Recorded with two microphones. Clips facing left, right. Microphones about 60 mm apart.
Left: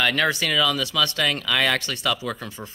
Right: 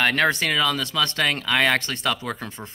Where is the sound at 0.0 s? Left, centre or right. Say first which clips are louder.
Right 1 dB; right.